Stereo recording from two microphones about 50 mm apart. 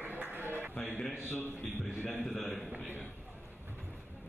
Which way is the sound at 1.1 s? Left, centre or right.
Left.